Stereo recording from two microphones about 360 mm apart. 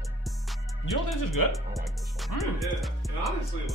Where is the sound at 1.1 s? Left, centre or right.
Left.